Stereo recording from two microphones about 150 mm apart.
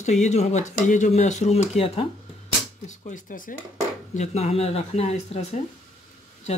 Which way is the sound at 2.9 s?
60° left (ahead or behind).